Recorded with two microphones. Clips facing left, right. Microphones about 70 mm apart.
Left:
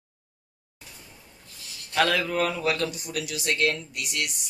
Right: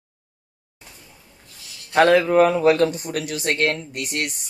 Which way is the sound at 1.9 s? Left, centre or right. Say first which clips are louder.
Right 9 dB; right.